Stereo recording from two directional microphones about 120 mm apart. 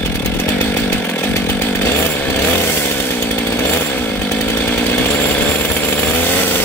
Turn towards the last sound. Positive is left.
turn(degrees=15)  # may be behind; listen again after turning